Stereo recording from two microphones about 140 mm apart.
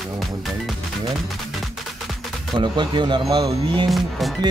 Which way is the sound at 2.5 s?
35° right (ahead or behind).